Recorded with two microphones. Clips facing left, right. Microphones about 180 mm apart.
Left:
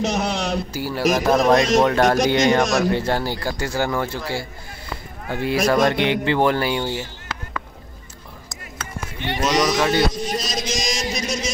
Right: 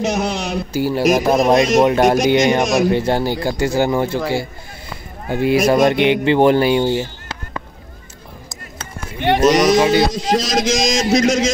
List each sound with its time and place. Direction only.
0.0 s a man's voice: 5° right (ahead or behind)
0.7 s a man's voice: 20° right (ahead or behind)
1.0 s a man's voice: 10° right (ahead or behind); by 7.6 s 25° right (ahead or behind)
9.5 s a man's voice: 15° right (ahead or behind)
10.1 s a man's voice: 90° right